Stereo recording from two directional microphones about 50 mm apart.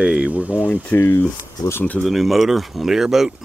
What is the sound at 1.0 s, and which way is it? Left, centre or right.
Speech, left.